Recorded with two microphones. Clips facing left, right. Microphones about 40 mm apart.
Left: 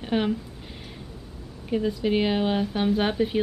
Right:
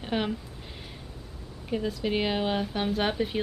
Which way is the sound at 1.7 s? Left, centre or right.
Centre.